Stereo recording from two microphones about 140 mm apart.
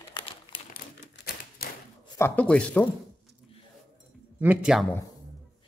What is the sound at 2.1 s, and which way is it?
Speech, 15° left (ahead or behind).